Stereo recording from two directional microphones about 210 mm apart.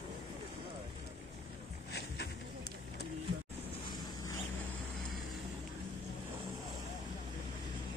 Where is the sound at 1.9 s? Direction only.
50° left (ahead or behind).